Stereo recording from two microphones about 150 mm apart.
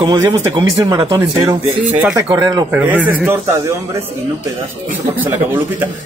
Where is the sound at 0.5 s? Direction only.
25° right (ahead or behind).